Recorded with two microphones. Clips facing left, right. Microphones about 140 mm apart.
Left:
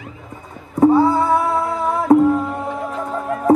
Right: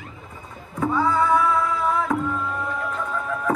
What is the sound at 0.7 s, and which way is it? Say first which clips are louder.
Music: left 9 dB; 35° left (ahead or behind).